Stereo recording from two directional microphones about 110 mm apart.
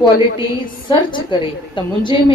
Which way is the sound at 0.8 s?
45° left (ahead or behind).